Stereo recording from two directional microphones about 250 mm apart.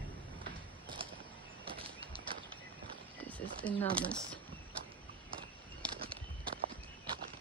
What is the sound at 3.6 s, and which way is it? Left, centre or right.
Speech, centre.